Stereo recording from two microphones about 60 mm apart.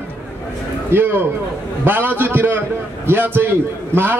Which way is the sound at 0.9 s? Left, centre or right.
Right.